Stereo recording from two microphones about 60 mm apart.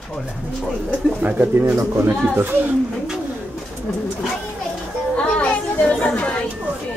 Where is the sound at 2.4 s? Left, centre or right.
Right.